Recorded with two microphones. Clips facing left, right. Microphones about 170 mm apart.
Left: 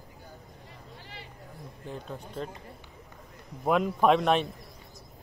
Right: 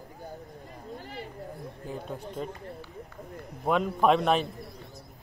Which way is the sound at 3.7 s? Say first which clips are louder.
Even; centre (ahead or behind).